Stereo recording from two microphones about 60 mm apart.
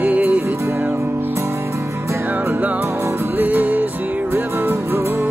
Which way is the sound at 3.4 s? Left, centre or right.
Right.